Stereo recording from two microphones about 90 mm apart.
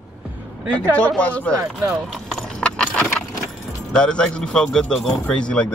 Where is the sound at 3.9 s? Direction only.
10° left (ahead or behind).